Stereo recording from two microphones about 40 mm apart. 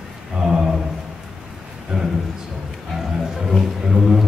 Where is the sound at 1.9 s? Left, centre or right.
Centre.